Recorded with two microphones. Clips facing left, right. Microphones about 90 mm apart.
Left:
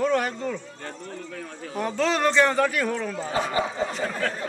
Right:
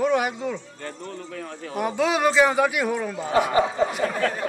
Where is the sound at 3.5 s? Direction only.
30° right (ahead or behind).